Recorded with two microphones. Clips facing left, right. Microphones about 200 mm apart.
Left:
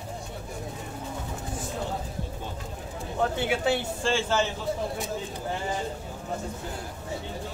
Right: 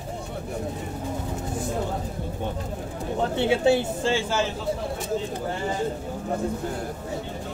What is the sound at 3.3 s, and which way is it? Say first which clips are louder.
Speech: right 9 dB; 25° right (ahead or behind).